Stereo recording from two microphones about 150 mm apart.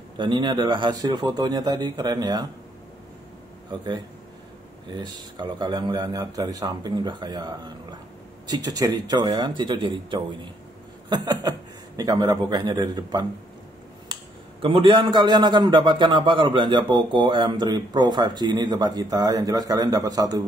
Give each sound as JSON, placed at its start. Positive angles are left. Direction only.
{"t": 0.2, "sound": "a man's voice", "side_deg": -30}
{"t": 4.9, "sound": "a man's voice", "side_deg": -30}
{"t": 14.6, "sound": "a man's voice", "side_deg": -35}